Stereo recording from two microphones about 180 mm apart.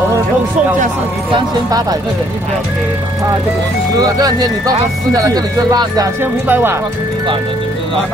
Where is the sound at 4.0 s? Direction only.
20° right (ahead or behind).